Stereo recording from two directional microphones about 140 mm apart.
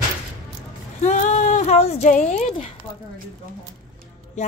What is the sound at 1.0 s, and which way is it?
Speech, 60° left (ahead or behind).